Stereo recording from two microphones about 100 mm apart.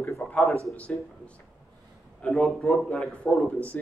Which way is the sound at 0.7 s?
10° left (ahead or behind).